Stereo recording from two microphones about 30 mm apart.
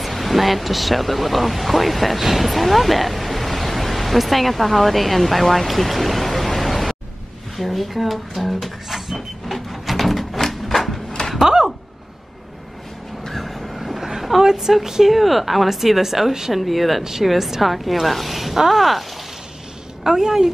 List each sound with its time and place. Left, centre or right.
0.0 s speech: centre
7.5 s a sound: centre
11.1 s a sound: centre
13.3 s vehicle: centre
14.4 s a woman's voice: centre
15.0 s a woman's voice: centre
16.6 s speech: centre
17.0 s a woman's voice: centre
20.0 s a woman's voice: centre